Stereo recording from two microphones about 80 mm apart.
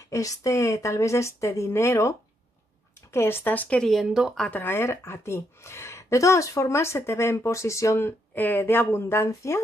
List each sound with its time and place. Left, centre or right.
0.1 s a woman's voice: left; by 3.8 s centre
3.8 s speech: centre
4.5 s a woman's voice: left
8.4 s a woman's voice: left